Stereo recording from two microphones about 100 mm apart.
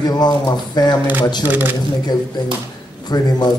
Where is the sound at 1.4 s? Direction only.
20° right (ahead or behind).